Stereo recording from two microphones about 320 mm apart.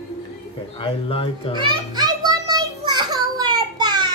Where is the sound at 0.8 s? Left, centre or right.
Centre.